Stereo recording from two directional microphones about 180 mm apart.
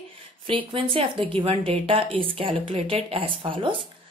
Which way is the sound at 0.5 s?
30° right (ahead or behind).